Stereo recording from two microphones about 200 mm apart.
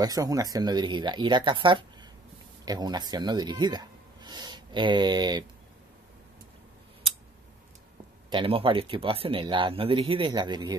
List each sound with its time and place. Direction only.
0.0 s speech: 20° right (ahead or behind)
8.3 s speech: 25° right (ahead or behind)